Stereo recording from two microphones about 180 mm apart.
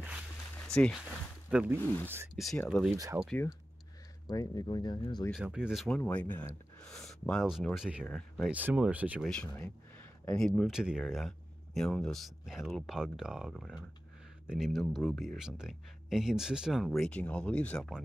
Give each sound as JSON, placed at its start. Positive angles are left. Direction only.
{"t": 0.6, "sound": "a sound", "side_deg": 5}
{"t": 1.5, "sound": "speech", "side_deg": -10}
{"t": 1.8, "sound": "speech", "side_deg": 10}
{"t": 2.3, "sound": "speech", "side_deg": 0}
{"t": 4.3, "sound": "speech", "side_deg": 20}
{"t": 5.3, "sound": "speech", "side_deg": -5}
{"t": 10.2, "sound": "speech", "side_deg": 5}